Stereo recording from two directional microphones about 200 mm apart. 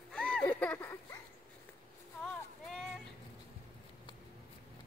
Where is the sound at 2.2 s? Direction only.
Centre (ahead or behind).